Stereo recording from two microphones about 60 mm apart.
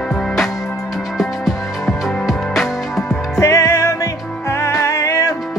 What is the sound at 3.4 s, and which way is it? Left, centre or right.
Music, left.